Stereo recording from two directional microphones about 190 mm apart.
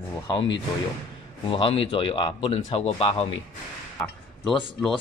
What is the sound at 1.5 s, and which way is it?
Speech, 30° left (ahead or behind).